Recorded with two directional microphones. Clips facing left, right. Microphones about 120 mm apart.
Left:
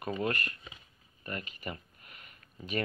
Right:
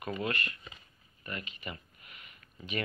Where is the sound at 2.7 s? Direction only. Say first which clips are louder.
Left 2 dB; 40° left (ahead or behind).